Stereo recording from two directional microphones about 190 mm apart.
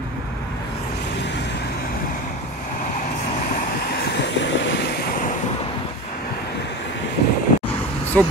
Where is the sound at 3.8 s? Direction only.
55° left (ahead or behind).